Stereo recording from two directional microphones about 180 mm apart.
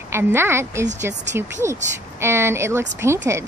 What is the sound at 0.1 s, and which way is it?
A woman's voice, 15° right (ahead or behind).